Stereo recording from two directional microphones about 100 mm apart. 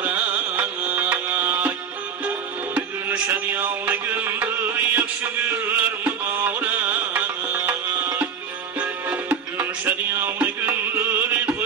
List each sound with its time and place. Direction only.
0.0 s music: 15° right (ahead or behind)